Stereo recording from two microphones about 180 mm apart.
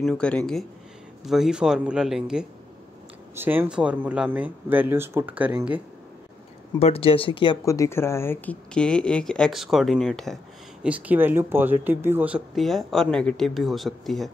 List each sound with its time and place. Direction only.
0.0 s speech: 5° left (ahead or behind)
6.8 s speech: 35° left (ahead or behind)
7.6 s speech: 15° left (ahead or behind); by 14.3 s centre (ahead or behind)